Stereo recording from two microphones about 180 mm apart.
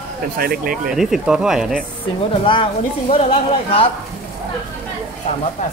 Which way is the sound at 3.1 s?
30° left (ahead or behind).